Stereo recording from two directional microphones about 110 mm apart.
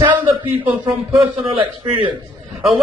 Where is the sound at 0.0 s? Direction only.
45° right (ahead or behind).